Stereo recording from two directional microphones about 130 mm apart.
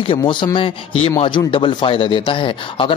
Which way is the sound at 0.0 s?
40° left (ahead or behind).